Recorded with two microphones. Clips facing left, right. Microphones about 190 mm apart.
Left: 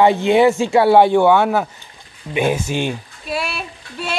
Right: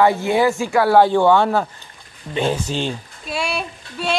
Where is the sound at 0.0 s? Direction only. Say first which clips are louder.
Left 3 dB; 20° left (ahead or behind).